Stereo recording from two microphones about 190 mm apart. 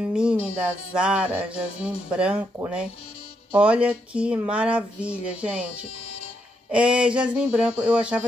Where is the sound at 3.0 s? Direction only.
30° left (ahead or behind).